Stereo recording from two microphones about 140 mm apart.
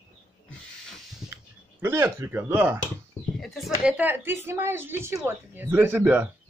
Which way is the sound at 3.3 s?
Centre (ahead or behind).